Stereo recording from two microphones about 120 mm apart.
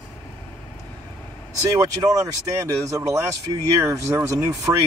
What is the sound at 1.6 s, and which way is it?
Speech, 25° right (ahead or behind).